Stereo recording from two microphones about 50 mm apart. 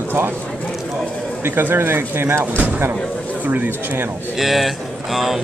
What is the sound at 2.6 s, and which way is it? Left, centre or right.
Speech, right.